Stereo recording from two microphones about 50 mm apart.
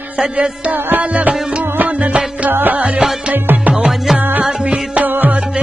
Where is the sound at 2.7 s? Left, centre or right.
Right.